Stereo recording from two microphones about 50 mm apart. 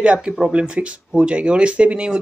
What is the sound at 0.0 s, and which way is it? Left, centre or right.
Speech, right.